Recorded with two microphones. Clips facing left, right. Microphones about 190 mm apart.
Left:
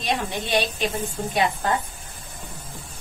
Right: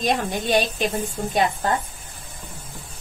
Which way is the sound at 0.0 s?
45° right (ahead or behind).